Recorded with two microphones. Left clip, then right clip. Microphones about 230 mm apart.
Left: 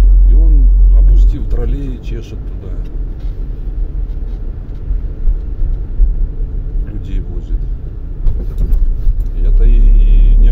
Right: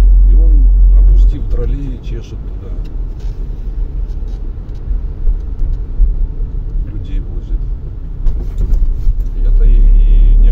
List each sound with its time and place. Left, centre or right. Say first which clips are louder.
1.1 s vehicle: even; left
9.6 s vehicle: left 2 dB; left